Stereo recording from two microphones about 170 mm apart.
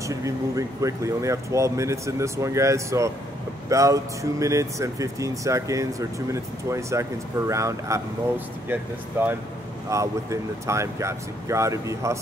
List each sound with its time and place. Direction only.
0.0 s speech: 20° right (ahead or behind)
9.8 s speech: 20° right (ahead or behind)